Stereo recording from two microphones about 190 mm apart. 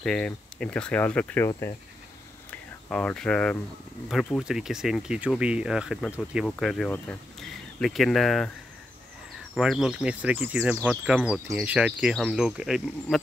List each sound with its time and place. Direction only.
0.0 s speech: 5° left (ahead or behind)
1.5 s cricket: 20° left (ahead or behind)
2.5 s speech: 5° left (ahead or behind)
9.6 s speech: 5° right (ahead or behind)